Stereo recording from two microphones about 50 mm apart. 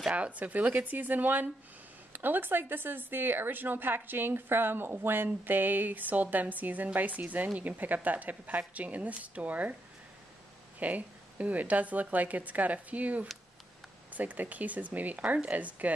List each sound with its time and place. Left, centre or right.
0.1 s a woman's voice: right
10.8 s speech: right